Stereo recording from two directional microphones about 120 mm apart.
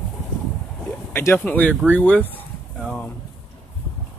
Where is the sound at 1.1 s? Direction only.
20° left (ahead or behind).